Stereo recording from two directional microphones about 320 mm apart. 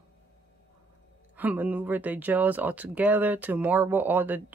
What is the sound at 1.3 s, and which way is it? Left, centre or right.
Speech, centre.